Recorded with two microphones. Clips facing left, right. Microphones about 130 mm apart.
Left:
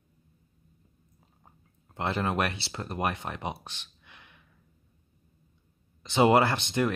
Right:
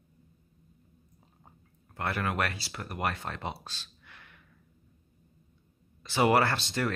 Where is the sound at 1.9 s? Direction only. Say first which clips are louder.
Left 3 dB; 25° left (ahead or behind).